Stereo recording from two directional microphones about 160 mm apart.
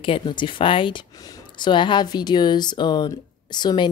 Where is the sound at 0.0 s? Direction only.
30° left (ahead or behind).